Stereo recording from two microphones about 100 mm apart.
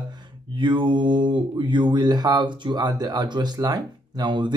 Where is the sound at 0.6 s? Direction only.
55° right (ahead or behind).